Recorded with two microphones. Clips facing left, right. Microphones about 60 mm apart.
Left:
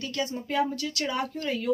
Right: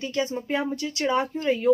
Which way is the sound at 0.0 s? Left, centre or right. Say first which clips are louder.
Right 4 dB; right.